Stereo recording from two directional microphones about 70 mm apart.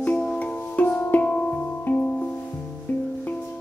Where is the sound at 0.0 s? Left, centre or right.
Centre.